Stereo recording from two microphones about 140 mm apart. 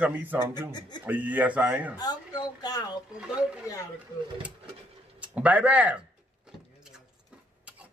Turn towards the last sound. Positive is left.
turn(degrees=-10)  # may be behind; listen again after turning